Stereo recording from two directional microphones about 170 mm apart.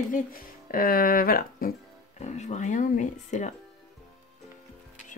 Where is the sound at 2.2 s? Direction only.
45° left (ahead or behind).